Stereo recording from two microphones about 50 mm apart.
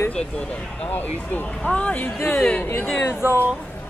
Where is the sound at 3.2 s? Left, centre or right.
Right.